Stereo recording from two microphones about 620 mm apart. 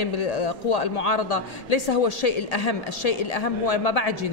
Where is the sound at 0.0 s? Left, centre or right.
Left.